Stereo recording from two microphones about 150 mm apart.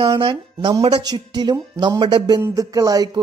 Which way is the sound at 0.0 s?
35° right (ahead or behind).